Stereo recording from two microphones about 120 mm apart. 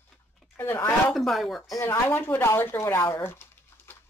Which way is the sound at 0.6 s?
15° left (ahead or behind).